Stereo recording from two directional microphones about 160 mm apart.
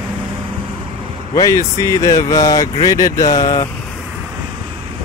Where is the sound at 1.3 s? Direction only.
20° left (ahead or behind).